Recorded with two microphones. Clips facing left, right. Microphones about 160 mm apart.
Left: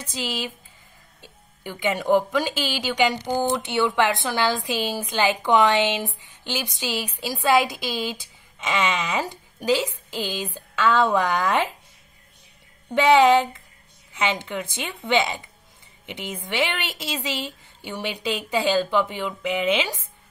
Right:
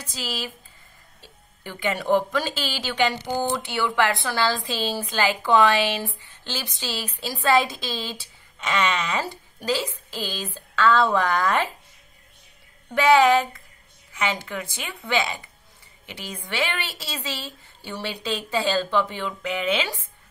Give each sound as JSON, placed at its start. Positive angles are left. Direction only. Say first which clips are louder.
{"t": 0.1, "sound": "a woman's voice", "louder": "left 3 dB", "side_deg": 20}
{"t": 12.9, "sound": "a woman's voice", "louder": "left 1 dB", "side_deg": 20}